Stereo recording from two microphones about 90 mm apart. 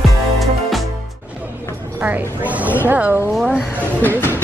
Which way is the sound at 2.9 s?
20° right (ahead or behind).